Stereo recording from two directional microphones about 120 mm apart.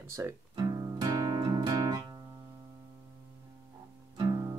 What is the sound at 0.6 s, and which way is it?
Music, 30° right (ahead or behind).